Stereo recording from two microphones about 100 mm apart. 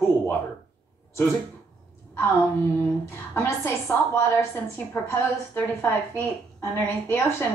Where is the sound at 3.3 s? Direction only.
25° left (ahead or behind).